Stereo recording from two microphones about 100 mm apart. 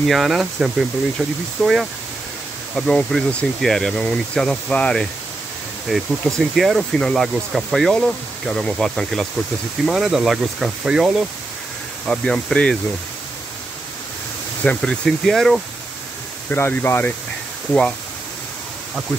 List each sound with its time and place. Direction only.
0.0 s speech: centre (ahead or behind)
12.1 s speech: 5° left (ahead or behind)
14.6 s speech: 10° left (ahead or behind)
16.4 s speech: 20° left (ahead or behind)